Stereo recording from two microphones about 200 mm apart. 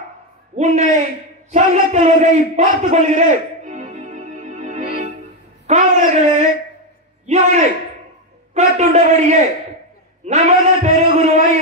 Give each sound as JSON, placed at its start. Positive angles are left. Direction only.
{"t": 0.6, "sound": "a man's voice", "side_deg": -35}
{"t": 1.5, "sound": "a sound", "side_deg": -35}
{"t": 5.7, "sound": "speech", "side_deg": -35}